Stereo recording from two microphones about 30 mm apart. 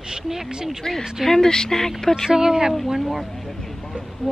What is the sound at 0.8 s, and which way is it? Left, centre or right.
Speech, left.